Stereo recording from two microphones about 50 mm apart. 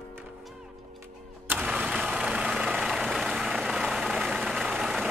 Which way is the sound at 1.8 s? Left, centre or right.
Centre.